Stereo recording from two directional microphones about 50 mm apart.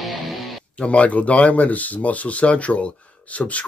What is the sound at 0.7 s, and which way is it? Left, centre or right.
Speech, left.